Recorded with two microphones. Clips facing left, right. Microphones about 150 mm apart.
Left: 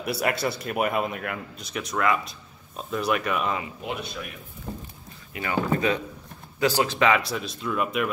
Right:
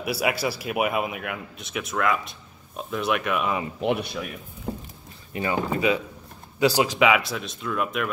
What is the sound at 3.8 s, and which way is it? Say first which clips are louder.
Speech: right 8 dB; 70° right (ahead or behind).